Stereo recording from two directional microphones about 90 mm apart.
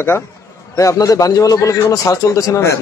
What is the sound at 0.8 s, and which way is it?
A man's voice, 40° left (ahead or behind).